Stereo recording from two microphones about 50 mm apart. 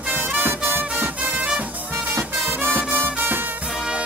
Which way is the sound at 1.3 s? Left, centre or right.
Centre.